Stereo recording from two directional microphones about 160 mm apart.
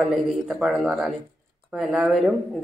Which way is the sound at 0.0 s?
Centre (ahead or behind).